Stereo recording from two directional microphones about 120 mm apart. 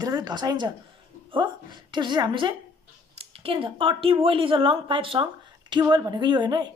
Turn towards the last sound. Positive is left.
turn(degrees=-35)  # may be behind; listen again after turning